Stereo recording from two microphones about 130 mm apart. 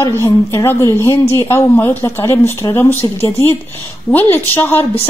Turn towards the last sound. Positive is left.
turn(degrees=15)  # may be behind; listen again after turning